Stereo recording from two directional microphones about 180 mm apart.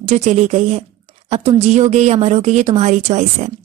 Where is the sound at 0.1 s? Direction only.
40° right (ahead or behind).